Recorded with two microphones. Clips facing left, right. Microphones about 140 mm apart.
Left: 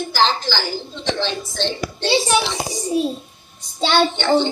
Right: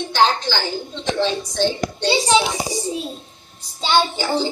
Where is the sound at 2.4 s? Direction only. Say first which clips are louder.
Right 1 dB; 10° right (ahead or behind).